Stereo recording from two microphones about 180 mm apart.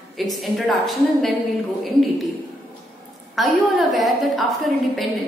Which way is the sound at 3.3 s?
Centre (ahead or behind).